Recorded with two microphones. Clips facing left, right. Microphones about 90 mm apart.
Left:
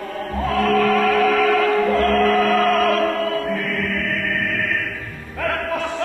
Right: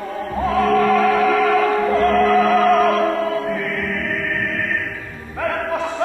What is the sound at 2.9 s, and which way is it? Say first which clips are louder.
Opera: right 1 dB; centre (ahead or behind).